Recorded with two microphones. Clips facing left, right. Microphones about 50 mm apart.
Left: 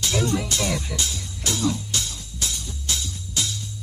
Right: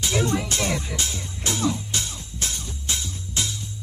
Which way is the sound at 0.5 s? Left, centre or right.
Right.